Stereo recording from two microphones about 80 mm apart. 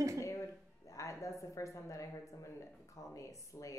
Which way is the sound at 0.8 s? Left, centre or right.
Left.